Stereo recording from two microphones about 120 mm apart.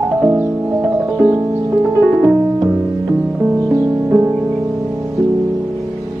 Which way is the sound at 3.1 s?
10° right (ahead or behind).